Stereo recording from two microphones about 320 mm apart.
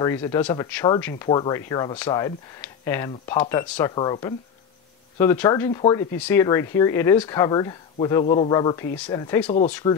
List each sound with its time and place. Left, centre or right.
0.0 s speech: centre